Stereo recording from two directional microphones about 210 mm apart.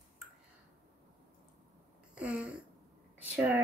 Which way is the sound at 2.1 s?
5° right (ahead or behind).